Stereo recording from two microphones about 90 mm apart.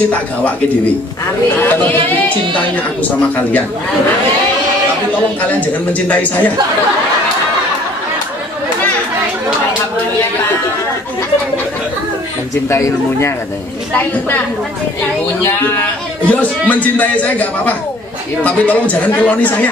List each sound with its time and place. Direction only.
1.6 s speech: 20° left (ahead or behind)
5.6 s speech: 15° left (ahead or behind)
12.6 s speech: 30° left (ahead or behind)
16.3 s speech: 15° left (ahead or behind)